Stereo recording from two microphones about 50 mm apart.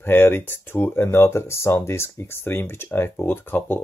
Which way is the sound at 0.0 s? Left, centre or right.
Left.